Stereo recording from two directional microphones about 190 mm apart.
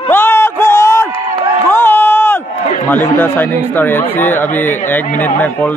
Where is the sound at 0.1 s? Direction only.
10° left (ahead or behind).